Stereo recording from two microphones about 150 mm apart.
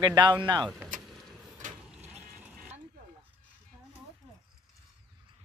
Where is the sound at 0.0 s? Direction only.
30° right (ahead or behind).